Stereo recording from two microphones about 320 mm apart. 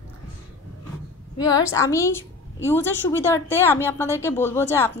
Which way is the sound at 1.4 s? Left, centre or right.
Centre.